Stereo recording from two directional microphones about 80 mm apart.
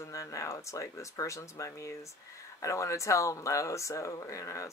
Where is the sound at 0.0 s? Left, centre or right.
Left.